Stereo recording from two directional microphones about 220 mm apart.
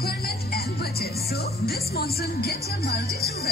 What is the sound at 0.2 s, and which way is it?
Music, 45° left (ahead or behind).